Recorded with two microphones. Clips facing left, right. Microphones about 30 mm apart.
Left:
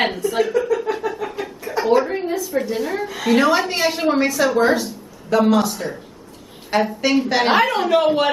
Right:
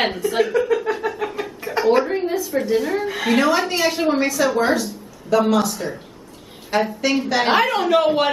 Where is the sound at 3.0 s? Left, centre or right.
Centre.